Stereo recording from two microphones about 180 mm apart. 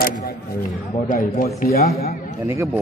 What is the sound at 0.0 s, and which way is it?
A man's voice, 55° left (ahead or behind).